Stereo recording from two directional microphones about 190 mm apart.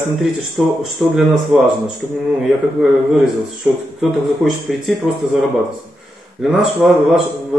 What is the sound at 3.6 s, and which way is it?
A man's voice, centre (ahead or behind).